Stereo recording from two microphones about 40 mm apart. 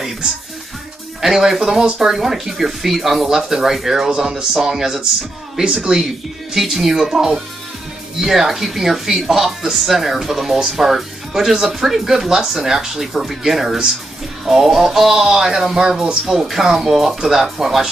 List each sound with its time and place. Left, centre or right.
1.2 s speech: centre